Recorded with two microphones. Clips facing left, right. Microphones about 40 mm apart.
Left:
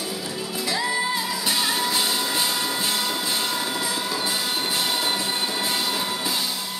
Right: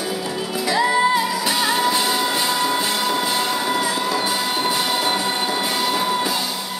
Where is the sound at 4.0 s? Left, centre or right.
Right.